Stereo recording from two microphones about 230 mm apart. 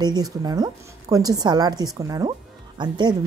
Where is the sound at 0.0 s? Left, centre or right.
Centre.